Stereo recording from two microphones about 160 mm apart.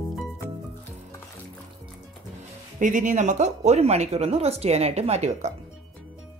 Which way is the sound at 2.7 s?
50° right (ahead or behind).